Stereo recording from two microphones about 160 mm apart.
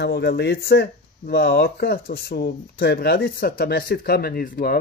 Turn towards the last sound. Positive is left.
turn(degrees=65)  # may be behind; listen again after turning